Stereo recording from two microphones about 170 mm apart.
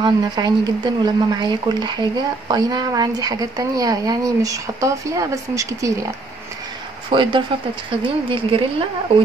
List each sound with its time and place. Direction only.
0.0 s speech: 25° right (ahead or behind)
7.1 s a woman's voice: 30° right (ahead or behind)